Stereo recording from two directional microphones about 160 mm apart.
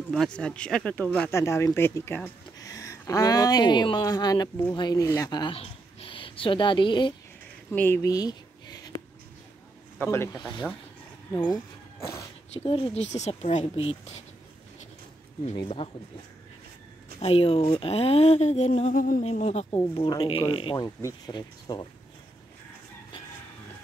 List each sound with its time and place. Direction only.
0.1 s speech: 5° left (ahead or behind); by 7.2 s 30° left (ahead or behind)
7.7 s a sound: 15° left (ahead or behind)
9.9 s speech: 15° left (ahead or behind)
10.4 s speech: 5° left (ahead or behind)
12.5 s speech: 35° left (ahead or behind)
15.8 s speech: 30° left (ahead or behind)
17.2 s speech: 40° left (ahead or behind); by 19.2 s 55° left (ahead or behind)
19.2 s speech: 45° left (ahead or behind)
19.7 s speech: 25° left (ahead or behind)